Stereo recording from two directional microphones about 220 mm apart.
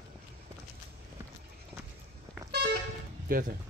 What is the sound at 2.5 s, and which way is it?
Vehicle, 50° right (ahead or behind).